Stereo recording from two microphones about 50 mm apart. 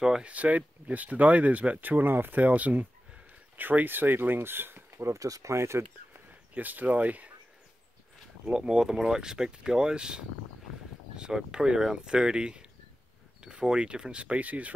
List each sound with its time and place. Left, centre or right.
0.0 s speech: centre
0.3 s speech: right
2.4 s speech: right
6.5 s speech: right
8.5 s speech: centre